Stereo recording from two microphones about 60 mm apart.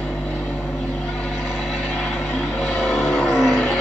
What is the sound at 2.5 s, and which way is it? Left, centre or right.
Vehicle, centre.